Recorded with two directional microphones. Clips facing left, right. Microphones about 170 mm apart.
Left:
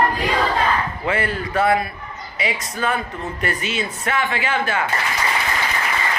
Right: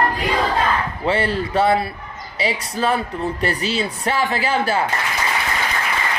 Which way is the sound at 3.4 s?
30° right (ahead or behind).